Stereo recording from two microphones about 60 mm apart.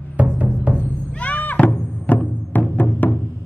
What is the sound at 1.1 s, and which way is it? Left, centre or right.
Music, left.